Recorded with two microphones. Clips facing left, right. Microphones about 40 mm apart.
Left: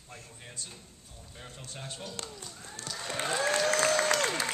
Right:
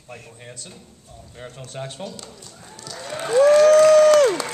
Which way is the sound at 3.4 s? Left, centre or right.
Right.